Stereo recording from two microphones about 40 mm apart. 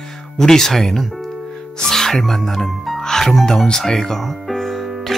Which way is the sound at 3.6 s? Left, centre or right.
Centre.